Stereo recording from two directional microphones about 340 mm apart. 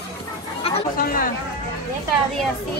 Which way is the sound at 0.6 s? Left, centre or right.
Left.